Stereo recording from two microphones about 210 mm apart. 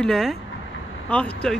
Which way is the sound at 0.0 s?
Centre (ahead or behind).